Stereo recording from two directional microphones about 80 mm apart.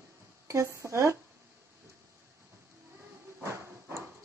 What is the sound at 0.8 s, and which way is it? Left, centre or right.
Speech, right.